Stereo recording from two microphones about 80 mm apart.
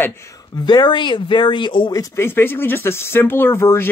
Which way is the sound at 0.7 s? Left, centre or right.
Left.